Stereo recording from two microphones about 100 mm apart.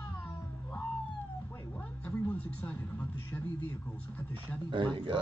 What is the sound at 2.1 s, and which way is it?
Music, 15° left (ahead or behind).